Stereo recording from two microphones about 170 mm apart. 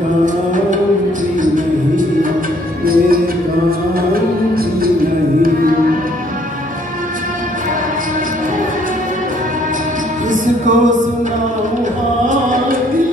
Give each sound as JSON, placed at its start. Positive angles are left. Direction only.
{"t": 2.8, "sound": "music", "side_deg": -60}
{"t": 10.3, "sound": "music", "side_deg": -50}
{"t": 12.3, "sound": "chant", "side_deg": -50}